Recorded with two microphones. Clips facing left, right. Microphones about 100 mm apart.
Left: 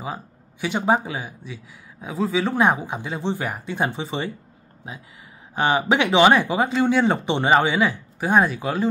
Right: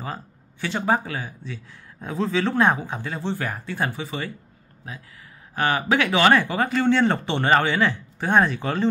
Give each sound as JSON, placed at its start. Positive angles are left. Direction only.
{"t": 0.0, "sound": "speech", "side_deg": 10}